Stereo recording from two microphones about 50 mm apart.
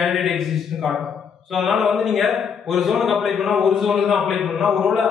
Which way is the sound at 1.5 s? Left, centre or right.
Centre.